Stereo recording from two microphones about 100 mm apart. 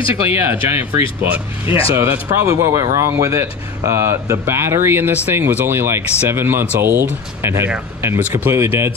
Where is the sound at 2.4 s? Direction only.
35° right (ahead or behind).